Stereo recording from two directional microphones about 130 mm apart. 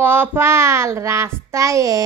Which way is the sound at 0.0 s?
15° right (ahead or behind).